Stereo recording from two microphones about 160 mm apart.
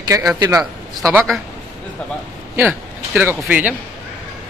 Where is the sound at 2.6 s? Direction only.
15° right (ahead or behind).